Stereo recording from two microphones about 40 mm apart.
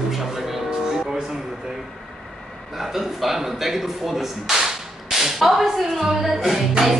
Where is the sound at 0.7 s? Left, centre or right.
Centre.